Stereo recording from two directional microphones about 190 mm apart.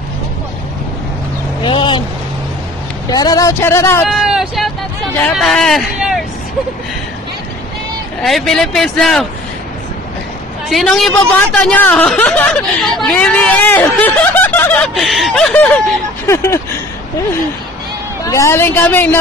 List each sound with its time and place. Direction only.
1.6 s a sound: 25° left (ahead or behind)
3.1 s a man's voice: 20° left (ahead or behind)
4.1 s vehicle: centre (ahead or behind)
5.3 s speech: centre (ahead or behind)
8.2 s speech: centre (ahead or behind)
10.7 s a man's voice: centre (ahead or behind)
18.2 s a man's voice: 15° left (ahead or behind)